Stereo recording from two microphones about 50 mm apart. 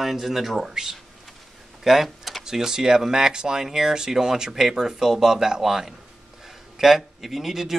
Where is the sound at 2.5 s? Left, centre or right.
Centre.